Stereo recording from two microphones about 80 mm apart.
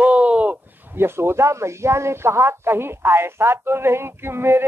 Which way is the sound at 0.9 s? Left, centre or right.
Right.